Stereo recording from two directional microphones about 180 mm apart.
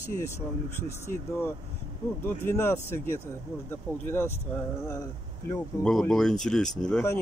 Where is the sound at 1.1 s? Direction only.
15° left (ahead or behind).